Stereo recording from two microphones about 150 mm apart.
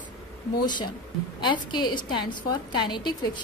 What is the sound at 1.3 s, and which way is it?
A woman's voice, 30° left (ahead or behind).